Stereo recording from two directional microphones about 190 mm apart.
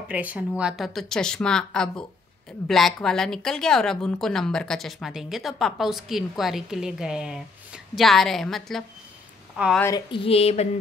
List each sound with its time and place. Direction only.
0.1 s a woman's voice: 5° right (ahead or behind)
9.8 s a woman's voice: 15° left (ahead or behind)
10.1 s a sound: 30° left (ahead or behind)